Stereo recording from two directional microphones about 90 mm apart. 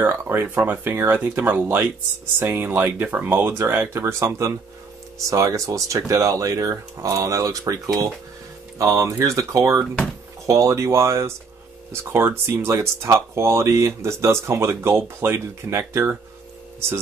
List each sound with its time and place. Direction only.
0.0 s speech: 25° right (ahead or behind)
4.2 s speech: 35° right (ahead or behind)